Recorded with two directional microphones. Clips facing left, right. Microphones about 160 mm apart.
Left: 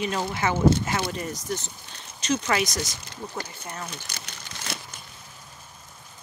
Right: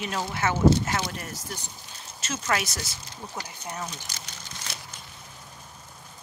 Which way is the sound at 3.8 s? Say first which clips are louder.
Left 1 dB; 65° left (ahead or behind).